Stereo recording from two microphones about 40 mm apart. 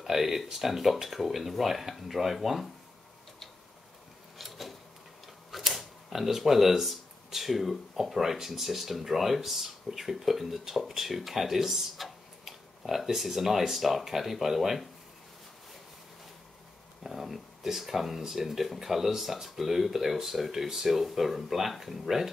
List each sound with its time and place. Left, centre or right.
0.0 s speech: centre
4.4 s a sound: centre
5.5 s speech: centre
17.0 s speech: centre